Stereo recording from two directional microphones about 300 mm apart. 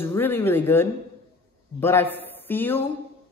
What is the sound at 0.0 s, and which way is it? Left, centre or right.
A man's voice, centre.